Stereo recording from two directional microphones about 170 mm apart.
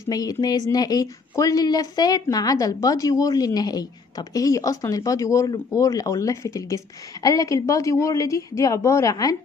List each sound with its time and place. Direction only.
0.1 s a woman's voice: 20° left (ahead or behind)